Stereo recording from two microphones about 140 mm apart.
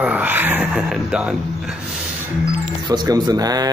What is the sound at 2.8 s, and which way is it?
Speech, 30° right (ahead or behind).